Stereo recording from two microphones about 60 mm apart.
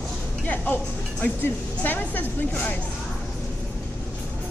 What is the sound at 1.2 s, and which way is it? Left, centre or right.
Speech, left.